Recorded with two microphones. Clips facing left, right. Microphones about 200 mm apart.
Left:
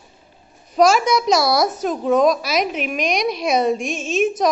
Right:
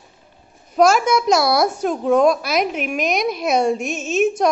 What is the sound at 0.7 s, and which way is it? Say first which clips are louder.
A woman's voice: even; 5° right (ahead or behind).